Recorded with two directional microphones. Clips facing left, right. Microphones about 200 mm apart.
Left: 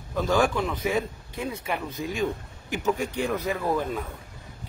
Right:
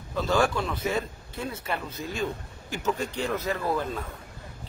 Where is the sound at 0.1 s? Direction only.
15° left (ahead or behind).